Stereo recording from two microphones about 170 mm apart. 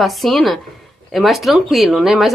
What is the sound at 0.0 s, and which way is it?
Speech, centre (ahead or behind).